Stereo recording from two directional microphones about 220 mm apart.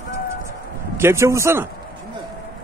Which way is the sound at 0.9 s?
10° right (ahead or behind).